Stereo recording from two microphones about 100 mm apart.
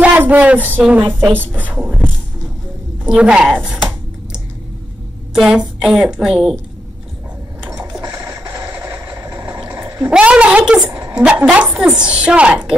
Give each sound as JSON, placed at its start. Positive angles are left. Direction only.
{"t": 0.0, "sound": "a woman's voice", "side_deg": -15}
{"t": 3.1, "sound": "computer keyboard", "side_deg": -10}
{"t": 5.3, "sound": "a woman's voice", "side_deg": -5}
{"t": 8.1, "sound": "music", "side_deg": -25}
{"t": 8.6, "sound": "vehicle", "side_deg": -20}
{"t": 9.2, "sound": "vehicle", "side_deg": -35}
{"t": 9.5, "sound": "a sound", "side_deg": -10}
{"t": 10.0, "sound": "a woman's voice", "side_deg": -10}